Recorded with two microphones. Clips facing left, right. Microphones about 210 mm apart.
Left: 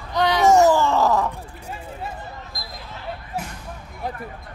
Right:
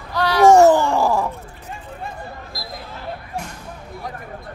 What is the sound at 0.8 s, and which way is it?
Groan, 10° right (ahead or behind).